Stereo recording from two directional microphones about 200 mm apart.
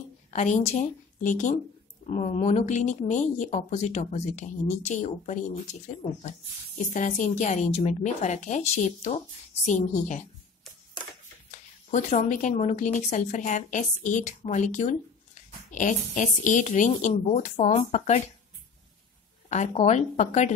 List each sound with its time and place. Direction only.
0.3 s a woman's voice: 35° left (ahead or behind)
6.9 s speech: 40° left (ahead or behind)
11.5 s speech: 35° left (ahead or behind)
19.5 s speech: 35° left (ahead or behind)